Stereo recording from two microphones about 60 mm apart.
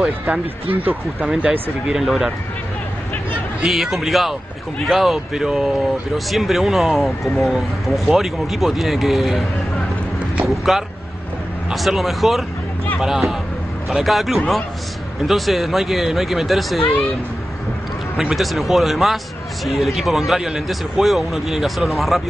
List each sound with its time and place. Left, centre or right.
0.3 s speech: right
1.4 s speech: centre
3.6 s speech: centre
10.4 s speech: centre
18.3 s speech: centre